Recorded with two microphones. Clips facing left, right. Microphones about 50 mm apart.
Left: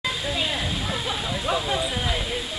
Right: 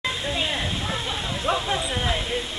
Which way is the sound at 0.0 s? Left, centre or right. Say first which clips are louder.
Even; centre.